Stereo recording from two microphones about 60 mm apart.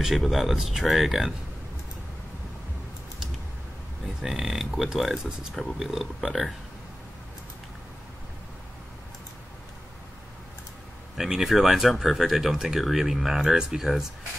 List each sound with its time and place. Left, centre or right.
0.2 s speech: centre
4.0 s a sound: centre
4.5 s speech: centre
11.1 s speech: centre